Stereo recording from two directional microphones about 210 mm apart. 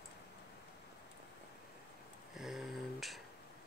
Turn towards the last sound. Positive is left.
turn(degrees=0)  # may be behind; listen again after turning